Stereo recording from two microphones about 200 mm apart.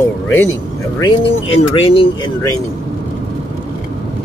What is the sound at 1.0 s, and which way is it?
Speech, 25° left (ahead or behind).